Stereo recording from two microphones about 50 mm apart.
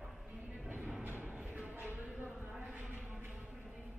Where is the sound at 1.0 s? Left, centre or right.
Right.